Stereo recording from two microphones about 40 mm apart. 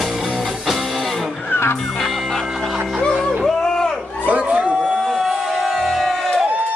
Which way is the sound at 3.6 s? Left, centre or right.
Centre.